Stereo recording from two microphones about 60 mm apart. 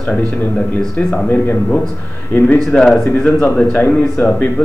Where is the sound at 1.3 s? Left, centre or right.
Left.